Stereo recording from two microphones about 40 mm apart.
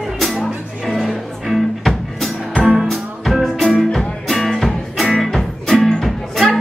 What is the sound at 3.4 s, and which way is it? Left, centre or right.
Music, centre.